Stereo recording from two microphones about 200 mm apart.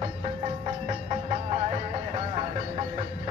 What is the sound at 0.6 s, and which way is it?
Music, 30° right (ahead or behind).